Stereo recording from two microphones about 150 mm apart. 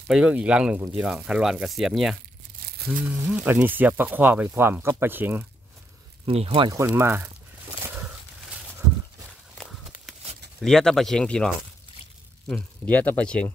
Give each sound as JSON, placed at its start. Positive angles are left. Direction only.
{"t": 0.1, "sound": "speech", "side_deg": -5}
{"t": 2.6, "sound": "crumpling", "side_deg": -80}
{"t": 3.3, "sound": "speech", "side_deg": -5}
{"t": 6.2, "sound": "speech", "side_deg": -40}
{"t": 6.7, "sound": "speech", "side_deg": -20}
{"t": 9.6, "sound": "a sound", "side_deg": 0}
{"t": 10.6, "sound": "speech", "side_deg": 5}